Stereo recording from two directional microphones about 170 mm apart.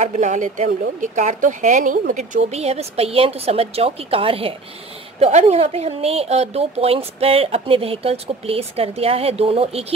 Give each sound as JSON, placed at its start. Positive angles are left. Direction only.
{"t": 0.1, "sound": "speech", "side_deg": -45}